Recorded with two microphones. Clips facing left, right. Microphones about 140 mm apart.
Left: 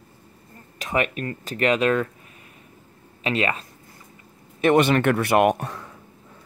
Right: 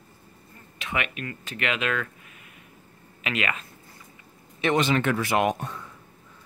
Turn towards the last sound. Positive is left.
turn(degrees=70)  # may be behind; listen again after turning